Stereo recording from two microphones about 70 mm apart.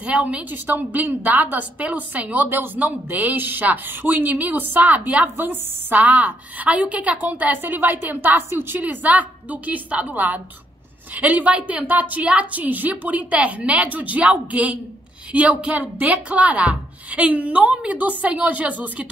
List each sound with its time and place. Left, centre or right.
0.0 s a woman's voice: centre